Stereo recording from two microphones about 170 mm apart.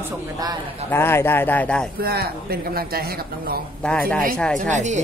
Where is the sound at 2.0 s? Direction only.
65° right (ahead or behind).